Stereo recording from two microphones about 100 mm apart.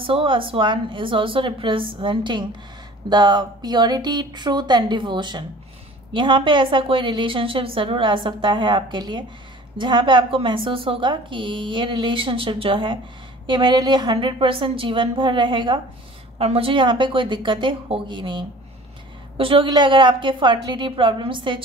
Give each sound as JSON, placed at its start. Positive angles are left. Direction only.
{"t": 0.0, "sound": "speech", "side_deg": -60}
{"t": 16.3, "sound": "speech", "side_deg": -75}
{"t": 19.3, "sound": "a woman's voice", "side_deg": -65}
{"t": 19.7, "sound": "speech", "side_deg": -55}